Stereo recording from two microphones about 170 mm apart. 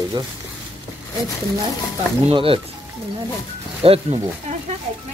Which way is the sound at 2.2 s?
35° right (ahead or behind).